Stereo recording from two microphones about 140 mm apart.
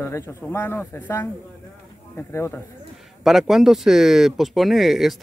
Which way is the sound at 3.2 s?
Centre (ahead or behind).